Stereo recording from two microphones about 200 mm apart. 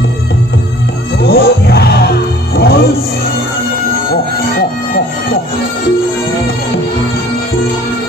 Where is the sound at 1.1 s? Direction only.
50° left (ahead or behind).